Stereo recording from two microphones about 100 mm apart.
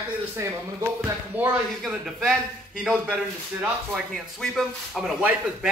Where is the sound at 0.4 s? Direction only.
30° right (ahead or behind).